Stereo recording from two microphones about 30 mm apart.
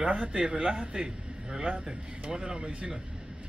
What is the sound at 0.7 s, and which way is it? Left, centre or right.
Speech, right.